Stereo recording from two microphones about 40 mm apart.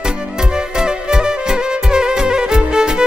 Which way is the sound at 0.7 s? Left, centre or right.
Centre.